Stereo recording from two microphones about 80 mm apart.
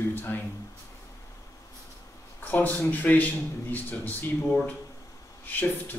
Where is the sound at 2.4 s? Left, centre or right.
Left.